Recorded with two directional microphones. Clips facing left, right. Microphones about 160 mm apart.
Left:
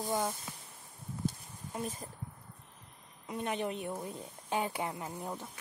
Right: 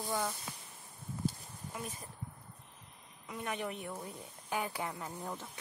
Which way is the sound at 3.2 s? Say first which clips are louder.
Left 4 dB; 25° left (ahead or behind).